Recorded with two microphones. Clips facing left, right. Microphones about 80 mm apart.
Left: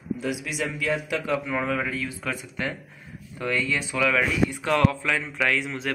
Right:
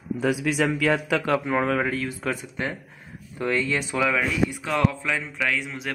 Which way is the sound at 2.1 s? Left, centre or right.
Right.